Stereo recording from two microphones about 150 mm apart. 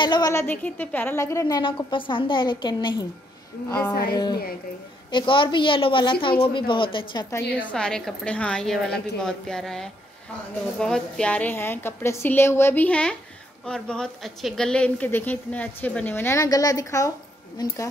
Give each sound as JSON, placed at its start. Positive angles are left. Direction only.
{"t": 0.0, "sound": "a woman's voice", "side_deg": 30}
{"t": 0.3, "sound": "speech", "side_deg": 15}
{"t": 1.6, "sound": "a woman's voice", "side_deg": 35}
{"t": 3.9, "sound": "speech", "side_deg": 90}
{"t": 5.1, "sound": "a woman's voice", "side_deg": 35}
{"t": 7.2, "sound": "speech", "side_deg": 15}
{"t": 7.7, "sound": "a woman's voice", "side_deg": 5}